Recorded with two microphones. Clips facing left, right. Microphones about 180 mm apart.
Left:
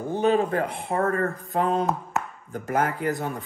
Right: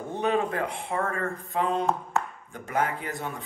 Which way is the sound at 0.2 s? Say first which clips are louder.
Left 4 dB; 30° left (ahead or behind).